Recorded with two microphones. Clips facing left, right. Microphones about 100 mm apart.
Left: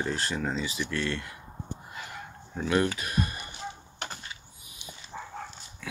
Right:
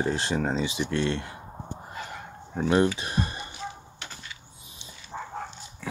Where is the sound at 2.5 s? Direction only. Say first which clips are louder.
Right 4 dB; 30° right (ahead or behind).